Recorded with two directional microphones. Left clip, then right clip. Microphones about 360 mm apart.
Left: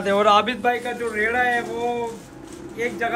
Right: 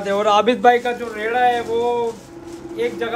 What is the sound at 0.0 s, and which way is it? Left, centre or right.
Speech, centre.